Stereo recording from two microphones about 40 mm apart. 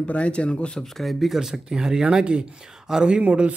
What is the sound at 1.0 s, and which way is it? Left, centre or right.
Speech, centre.